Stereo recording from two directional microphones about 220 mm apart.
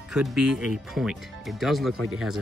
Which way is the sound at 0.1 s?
Centre (ahead or behind).